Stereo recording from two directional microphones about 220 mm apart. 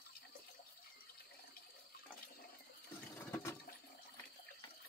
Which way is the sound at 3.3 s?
10° left (ahead or behind).